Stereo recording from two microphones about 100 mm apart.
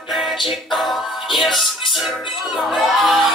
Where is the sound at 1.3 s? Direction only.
Centre (ahead or behind).